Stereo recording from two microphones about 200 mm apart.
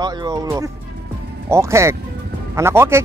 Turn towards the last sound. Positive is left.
turn(degrees=-10)  # may be behind; listen again after turning